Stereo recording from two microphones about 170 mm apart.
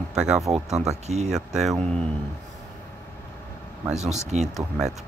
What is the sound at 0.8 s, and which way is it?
Speech, 40° right (ahead or behind).